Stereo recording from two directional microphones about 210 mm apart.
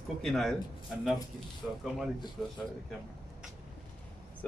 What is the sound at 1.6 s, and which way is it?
Speech, centre (ahead or behind).